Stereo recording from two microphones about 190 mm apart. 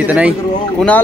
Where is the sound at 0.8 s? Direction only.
5° left (ahead or behind).